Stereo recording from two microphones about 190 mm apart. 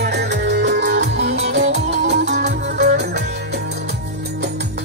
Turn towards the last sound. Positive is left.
turn(degrees=-60)  # may be behind; listen again after turning